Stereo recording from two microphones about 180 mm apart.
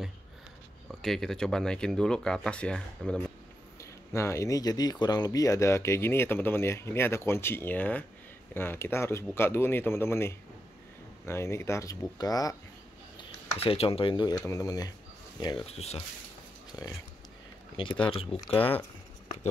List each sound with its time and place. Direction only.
0.8 s speech: centre (ahead or behind)
3.8 s speech: 15° left (ahead or behind)
13.6 s speech: 30° left (ahead or behind)
15.4 s speech: 30° left (ahead or behind)
17.7 s speech: 30° left (ahead or behind)